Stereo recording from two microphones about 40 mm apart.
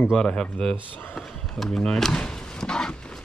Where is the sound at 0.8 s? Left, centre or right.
Left.